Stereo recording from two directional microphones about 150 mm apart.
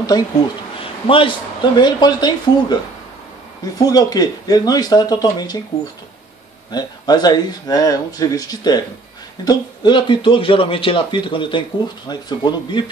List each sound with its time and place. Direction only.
0.1 s speech: 25° left (ahead or behind)
6.7 s speech: 25° left (ahead or behind)